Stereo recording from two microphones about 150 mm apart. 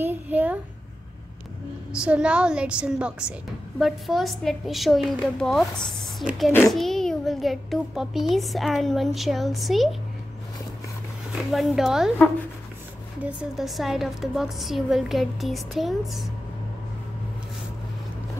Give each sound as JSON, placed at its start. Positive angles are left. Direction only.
{"t": 0.0, "sound": "a sound", "side_deg": -10}
{"t": 1.9, "sound": "a woman's voice", "side_deg": -5}
{"t": 11.5, "sound": "a child's voice", "side_deg": 0}
{"t": 13.2, "sound": "a child's voice", "side_deg": -10}